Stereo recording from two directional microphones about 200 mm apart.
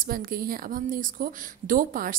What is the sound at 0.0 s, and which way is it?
A woman's voice, 45° right (ahead or behind).